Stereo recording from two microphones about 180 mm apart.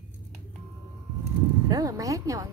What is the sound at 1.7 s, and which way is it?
Speech, 20° right (ahead or behind).